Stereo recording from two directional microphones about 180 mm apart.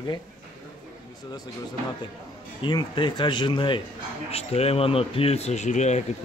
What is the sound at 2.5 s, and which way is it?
Speech, 25° left (ahead or behind).